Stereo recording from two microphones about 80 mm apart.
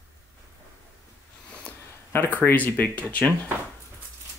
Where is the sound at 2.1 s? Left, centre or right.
Left.